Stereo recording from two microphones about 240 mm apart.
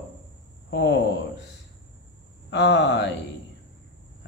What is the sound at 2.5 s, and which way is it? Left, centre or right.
Speech, left.